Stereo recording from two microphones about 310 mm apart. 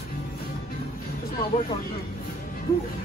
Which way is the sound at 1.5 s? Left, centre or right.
Left.